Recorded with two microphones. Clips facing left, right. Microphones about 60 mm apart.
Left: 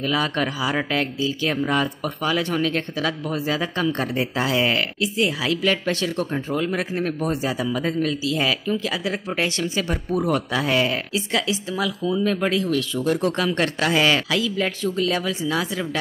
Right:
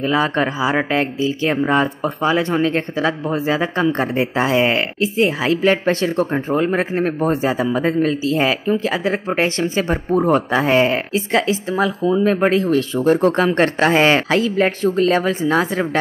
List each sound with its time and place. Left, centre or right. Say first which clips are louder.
0.0 s speech: right 5 dB; right